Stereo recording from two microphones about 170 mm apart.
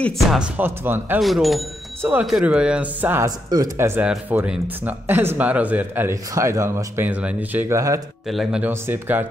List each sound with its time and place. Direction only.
0.0 s speech: 5° right (ahead or behind)
1.2 s speech: centre (ahead or behind)
2.0 s speech: 10° right (ahead or behind)
3.3 s speech: 25° right (ahead or behind)
8.3 s speech: centre (ahead or behind)